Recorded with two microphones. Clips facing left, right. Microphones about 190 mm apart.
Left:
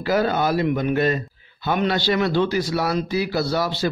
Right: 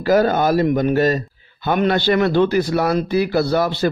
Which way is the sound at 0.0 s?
45° right (ahead or behind).